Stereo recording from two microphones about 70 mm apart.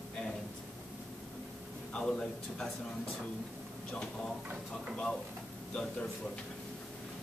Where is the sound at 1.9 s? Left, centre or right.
Centre.